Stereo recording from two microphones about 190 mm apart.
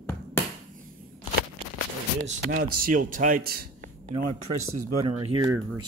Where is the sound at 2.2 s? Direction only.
45° right (ahead or behind).